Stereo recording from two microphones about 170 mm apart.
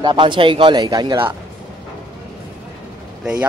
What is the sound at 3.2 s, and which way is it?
Speech, 5° right (ahead or behind).